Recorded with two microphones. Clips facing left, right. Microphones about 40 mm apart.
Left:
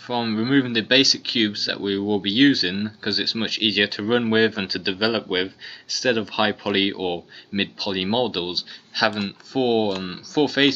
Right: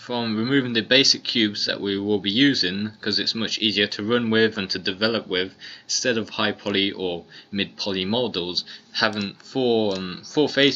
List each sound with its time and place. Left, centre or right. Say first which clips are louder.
0.1 s speech: left 2 dB; centre